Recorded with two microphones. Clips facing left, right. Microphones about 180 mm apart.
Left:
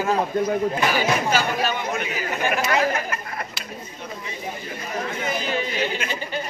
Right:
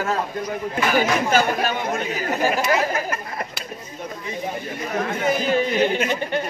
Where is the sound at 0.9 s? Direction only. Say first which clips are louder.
Right 3 dB; 50° right (ahead or behind).